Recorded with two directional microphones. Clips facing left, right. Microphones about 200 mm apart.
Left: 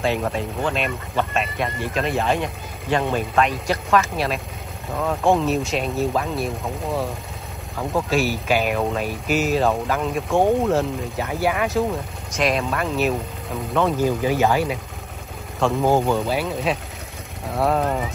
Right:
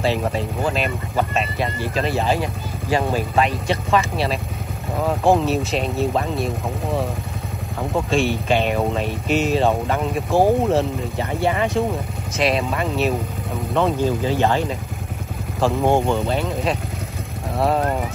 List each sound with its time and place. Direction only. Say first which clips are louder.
0.0 s speech: right 1 dB; centre (ahead or behind)
8.1 s speech: right 2 dB; 5° left (ahead or behind)
14.2 s speech: even; 10° left (ahead or behind)
15.8 s speech: even; 25° right (ahead or behind)
16.3 s speech: right 1 dB; 5° left (ahead or behind)